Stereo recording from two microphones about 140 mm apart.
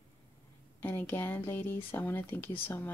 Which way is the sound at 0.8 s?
15° left (ahead or behind).